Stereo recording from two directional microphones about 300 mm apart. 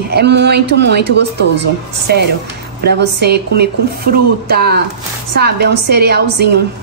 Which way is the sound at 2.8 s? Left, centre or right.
Right.